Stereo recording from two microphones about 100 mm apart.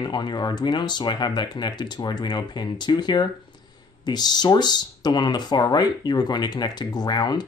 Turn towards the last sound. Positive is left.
turn(degrees=45)  # may be behind; listen again after turning